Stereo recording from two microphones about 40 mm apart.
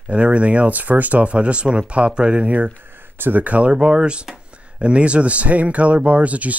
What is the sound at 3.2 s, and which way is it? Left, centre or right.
Speech, right.